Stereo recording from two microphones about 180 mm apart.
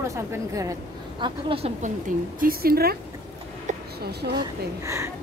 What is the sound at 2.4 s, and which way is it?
Speech, 55° right (ahead or behind).